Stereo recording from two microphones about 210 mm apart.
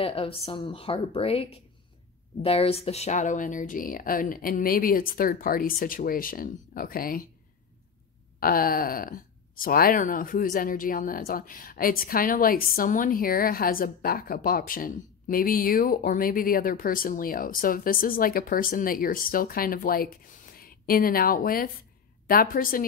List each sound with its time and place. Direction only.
0.0 s a woman's voice: 25° left (ahead or behind); by 7.2 s 45° left (ahead or behind)
8.4 s speech: 45° left (ahead or behind)